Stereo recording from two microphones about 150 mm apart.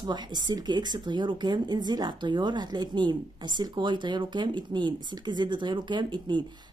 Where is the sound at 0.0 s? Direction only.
30° right (ahead or behind).